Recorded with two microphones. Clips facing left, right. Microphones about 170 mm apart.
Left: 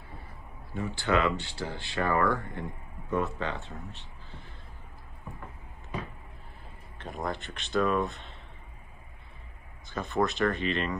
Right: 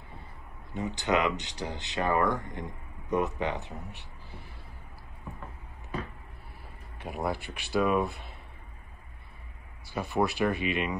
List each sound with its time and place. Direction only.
0.7 s speech: 20° right (ahead or behind)
7.0 s speech: 10° right (ahead or behind)
9.9 s speech: 15° right (ahead or behind)